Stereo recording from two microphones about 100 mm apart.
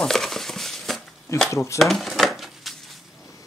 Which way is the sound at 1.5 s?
30° left (ahead or behind).